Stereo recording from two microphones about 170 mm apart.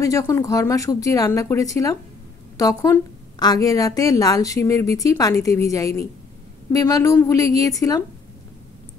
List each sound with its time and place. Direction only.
0.0 s a woman's voice: 20° left (ahead or behind)